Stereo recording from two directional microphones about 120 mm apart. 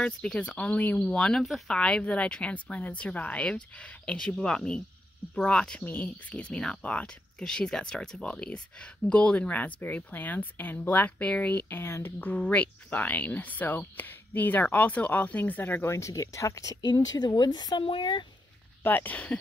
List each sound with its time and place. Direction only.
0.0 s speech: 10° left (ahead or behind); by 18.2 s 40° left (ahead or behind)
18.8 s speech: 15° left (ahead or behind)